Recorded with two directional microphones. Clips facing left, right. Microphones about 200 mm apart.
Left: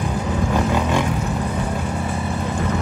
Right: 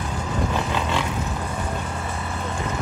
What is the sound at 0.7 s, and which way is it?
Roaring cats, 10° left (ahead or behind).